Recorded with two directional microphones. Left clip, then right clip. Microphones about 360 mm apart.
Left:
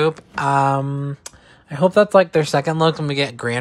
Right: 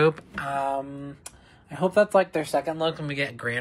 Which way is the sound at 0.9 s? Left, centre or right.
Left.